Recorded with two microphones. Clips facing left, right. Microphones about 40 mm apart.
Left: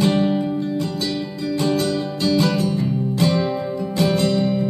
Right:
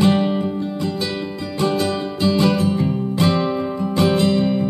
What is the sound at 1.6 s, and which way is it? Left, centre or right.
Music, right.